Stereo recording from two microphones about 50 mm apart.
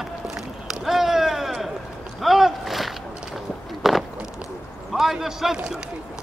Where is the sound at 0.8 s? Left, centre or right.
Centre.